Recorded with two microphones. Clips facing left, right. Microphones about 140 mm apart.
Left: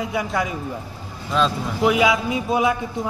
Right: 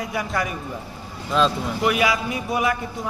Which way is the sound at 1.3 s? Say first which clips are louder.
Right 1 dB; centre (ahead or behind).